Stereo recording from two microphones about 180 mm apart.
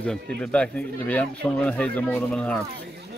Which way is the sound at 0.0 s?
5° left (ahead or behind).